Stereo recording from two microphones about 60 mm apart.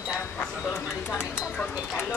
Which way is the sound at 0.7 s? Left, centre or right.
Left.